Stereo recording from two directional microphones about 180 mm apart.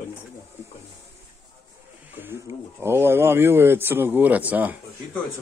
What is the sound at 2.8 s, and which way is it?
Speech, 15° right (ahead or behind).